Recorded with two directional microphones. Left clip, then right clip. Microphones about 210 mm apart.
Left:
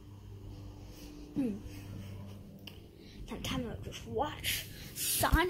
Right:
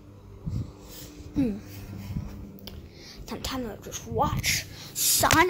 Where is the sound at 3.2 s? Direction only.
5° right (ahead or behind).